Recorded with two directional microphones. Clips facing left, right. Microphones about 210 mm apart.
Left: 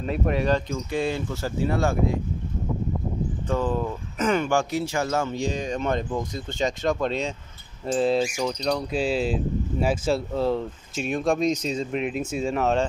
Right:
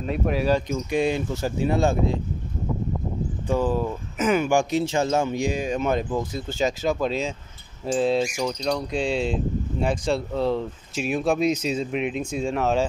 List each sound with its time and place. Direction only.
0.0 s speech: centre (ahead or behind)
0.7 s speech: 15° right (ahead or behind)
3.4 s speech: 10° right (ahead or behind)